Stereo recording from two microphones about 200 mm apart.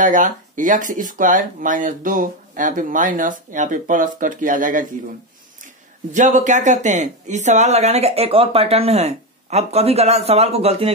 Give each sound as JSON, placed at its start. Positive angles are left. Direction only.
{"t": 0.0, "sound": "speech", "side_deg": -40}
{"t": 6.1, "sound": "speech", "side_deg": -40}